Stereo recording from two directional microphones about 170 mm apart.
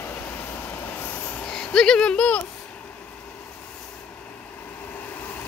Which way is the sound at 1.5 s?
5° left (ahead or behind).